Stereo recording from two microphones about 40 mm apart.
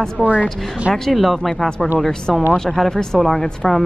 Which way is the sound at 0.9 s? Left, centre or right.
Centre.